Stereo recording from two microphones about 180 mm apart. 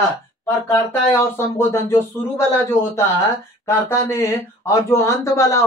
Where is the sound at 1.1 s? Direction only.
15° left (ahead or behind).